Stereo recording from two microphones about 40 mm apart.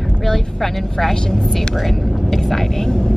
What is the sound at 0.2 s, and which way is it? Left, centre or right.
Vehicle, centre.